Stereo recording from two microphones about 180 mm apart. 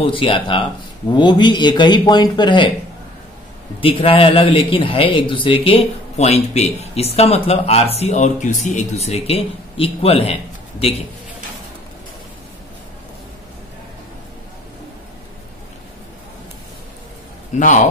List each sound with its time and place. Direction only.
0.0 s speech: 30° left (ahead or behind)
3.8 s a man's voice: 30° left (ahead or behind)
17.5 s a man's voice: 40° left (ahead or behind)